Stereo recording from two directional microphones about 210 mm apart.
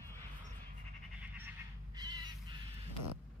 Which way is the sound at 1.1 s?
5° right (ahead or behind).